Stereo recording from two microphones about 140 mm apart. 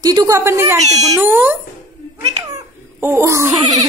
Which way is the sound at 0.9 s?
50° right (ahead or behind).